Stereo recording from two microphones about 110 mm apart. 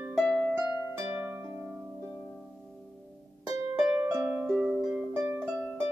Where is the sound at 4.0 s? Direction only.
20° right (ahead or behind).